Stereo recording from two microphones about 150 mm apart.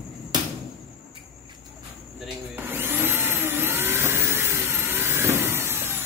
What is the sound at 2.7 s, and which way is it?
Vacuum cleaner, 15° right (ahead or behind).